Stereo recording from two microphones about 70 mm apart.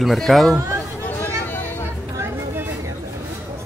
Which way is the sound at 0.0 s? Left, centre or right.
Centre.